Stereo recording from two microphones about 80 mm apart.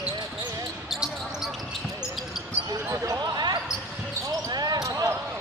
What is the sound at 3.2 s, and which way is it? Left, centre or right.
Basketball bounce, right.